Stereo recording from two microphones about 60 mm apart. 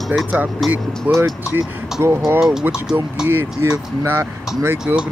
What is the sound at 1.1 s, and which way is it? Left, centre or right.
Speech, right.